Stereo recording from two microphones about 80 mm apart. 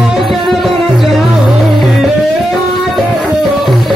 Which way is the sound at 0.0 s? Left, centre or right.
Centre.